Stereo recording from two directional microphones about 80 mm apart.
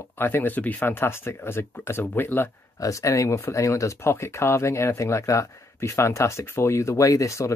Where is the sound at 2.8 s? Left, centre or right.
Left.